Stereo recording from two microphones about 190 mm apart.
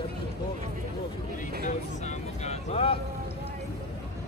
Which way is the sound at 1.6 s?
40° left (ahead or behind).